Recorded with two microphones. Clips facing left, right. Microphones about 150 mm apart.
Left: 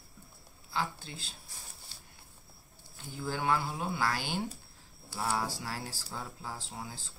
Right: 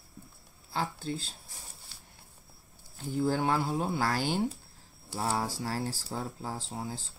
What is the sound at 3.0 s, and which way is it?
Speech, 35° right (ahead or behind).